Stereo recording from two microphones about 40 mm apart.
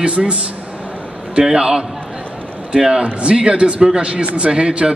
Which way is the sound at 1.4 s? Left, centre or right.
Centre.